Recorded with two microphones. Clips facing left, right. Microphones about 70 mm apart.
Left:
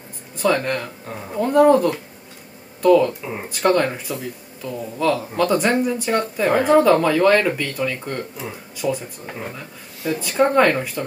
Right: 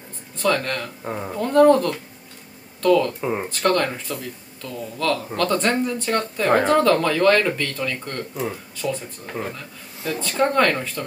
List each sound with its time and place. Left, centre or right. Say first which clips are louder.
0.4 s speech: left 2 dB; centre
1.0 s speech: right 4 dB; right
1.3 s speech: left 1 dB; centre